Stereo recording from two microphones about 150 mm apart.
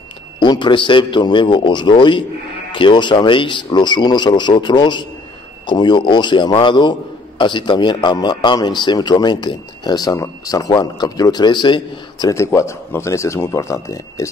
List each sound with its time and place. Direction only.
0.4 s a man's voice: 30° left (ahead or behind)